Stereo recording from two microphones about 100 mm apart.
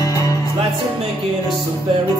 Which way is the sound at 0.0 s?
35° left (ahead or behind).